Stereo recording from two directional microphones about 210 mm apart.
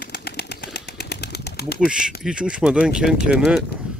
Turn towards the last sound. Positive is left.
turn(degrees=-5)  # may be behind; listen again after turning